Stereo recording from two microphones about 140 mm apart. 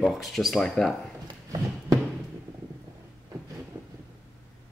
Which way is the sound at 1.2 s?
25° right (ahead or behind).